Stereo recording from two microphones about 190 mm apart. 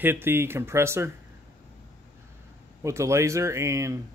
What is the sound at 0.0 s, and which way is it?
Speech, 10° right (ahead or behind).